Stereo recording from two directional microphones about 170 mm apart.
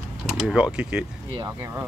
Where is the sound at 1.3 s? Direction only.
20° right (ahead or behind).